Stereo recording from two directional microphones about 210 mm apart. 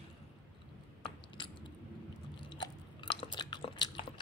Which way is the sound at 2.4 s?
20° left (ahead or behind).